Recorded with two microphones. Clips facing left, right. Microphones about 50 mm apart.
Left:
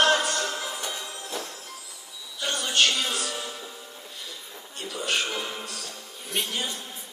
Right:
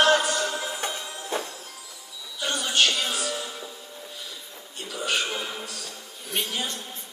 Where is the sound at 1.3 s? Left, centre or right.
Right.